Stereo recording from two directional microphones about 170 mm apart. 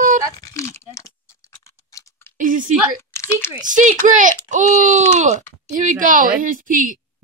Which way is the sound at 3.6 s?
50° right (ahead or behind).